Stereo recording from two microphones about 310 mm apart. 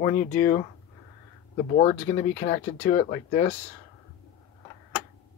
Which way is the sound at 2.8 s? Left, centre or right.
Left.